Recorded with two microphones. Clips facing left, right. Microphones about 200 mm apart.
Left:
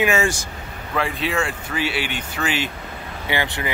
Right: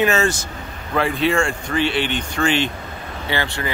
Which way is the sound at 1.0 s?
Centre (ahead or behind).